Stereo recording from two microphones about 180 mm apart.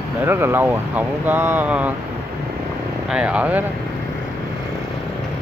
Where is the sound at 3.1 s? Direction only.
5° right (ahead or behind).